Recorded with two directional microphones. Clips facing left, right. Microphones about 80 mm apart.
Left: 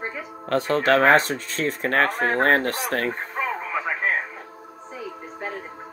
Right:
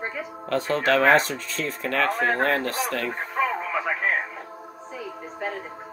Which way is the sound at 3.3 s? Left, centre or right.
Centre.